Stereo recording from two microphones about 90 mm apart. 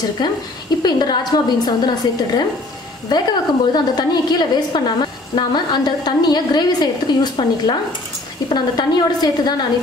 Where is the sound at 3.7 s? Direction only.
50° left (ahead or behind).